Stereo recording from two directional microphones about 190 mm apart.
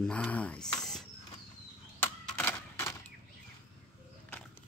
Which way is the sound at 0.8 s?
Centre (ahead or behind).